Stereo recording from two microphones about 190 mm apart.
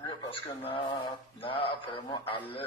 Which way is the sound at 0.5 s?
30° left (ahead or behind).